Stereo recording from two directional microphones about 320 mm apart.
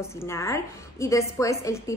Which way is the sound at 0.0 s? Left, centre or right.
Centre.